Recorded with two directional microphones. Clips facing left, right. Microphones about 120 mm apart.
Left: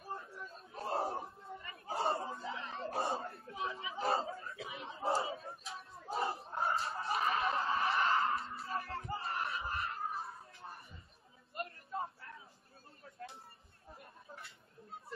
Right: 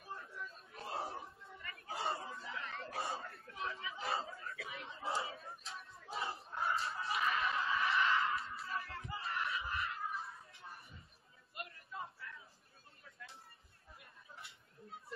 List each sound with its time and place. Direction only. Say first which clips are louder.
0.0 s chatter: left 3 dB; 35° left (ahead or behind)
6.1 s snicker: left 5 dB; 30° left (ahead or behind)
11.5 s a sound: left 7 dB; 40° left (ahead or behind)
13.8 s chatter: left 6 dB; 40° left (ahead or behind)